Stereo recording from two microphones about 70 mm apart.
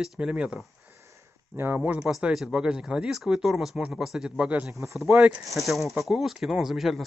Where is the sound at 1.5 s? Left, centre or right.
Right.